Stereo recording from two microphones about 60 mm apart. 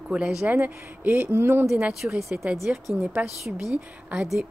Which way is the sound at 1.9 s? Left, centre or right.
Centre.